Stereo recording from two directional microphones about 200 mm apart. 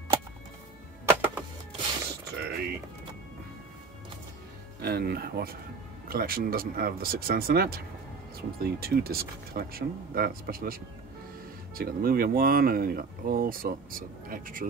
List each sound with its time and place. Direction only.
1.0 s music: 10° right (ahead or behind)
2.3 s music: 55° right (ahead or behind)
4.8 s speech: 50° right (ahead or behind)